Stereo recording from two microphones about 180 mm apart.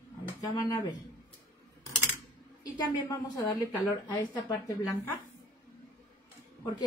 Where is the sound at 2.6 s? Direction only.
25° left (ahead or behind).